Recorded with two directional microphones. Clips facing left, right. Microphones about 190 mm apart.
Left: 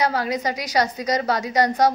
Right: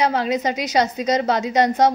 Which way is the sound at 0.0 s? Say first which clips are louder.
Right 3 dB; 25° right (ahead or behind).